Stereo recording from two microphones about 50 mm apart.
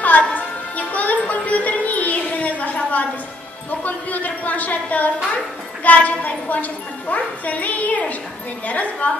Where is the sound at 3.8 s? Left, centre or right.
Left.